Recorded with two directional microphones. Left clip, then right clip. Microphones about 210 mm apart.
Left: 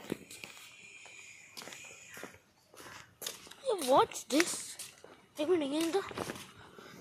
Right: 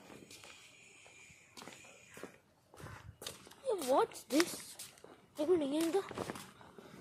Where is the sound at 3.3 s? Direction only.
10° left (ahead or behind).